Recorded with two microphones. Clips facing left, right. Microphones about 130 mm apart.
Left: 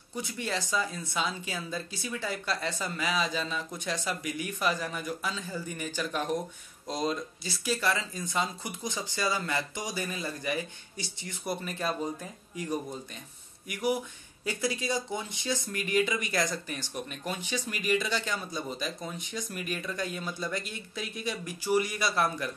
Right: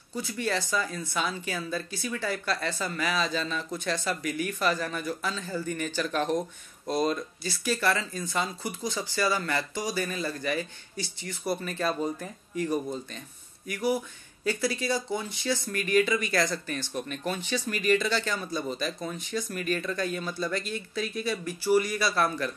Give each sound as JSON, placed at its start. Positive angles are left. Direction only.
{"t": 0.1, "sound": "speech", "side_deg": 20}
{"t": 14.4, "sound": "speech", "side_deg": 20}